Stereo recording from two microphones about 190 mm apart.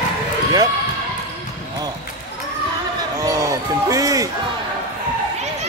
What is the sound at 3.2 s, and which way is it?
Basketball bounce, 15° right (ahead or behind).